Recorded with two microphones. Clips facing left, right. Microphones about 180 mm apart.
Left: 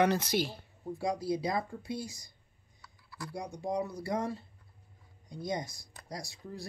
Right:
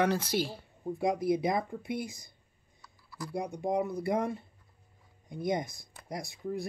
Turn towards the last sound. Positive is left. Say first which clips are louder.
# right 7 dB
turn(degrees=-20)  # may be behind; listen again after turning